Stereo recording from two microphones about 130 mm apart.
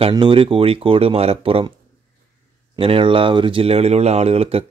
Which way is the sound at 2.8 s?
45° right (ahead or behind).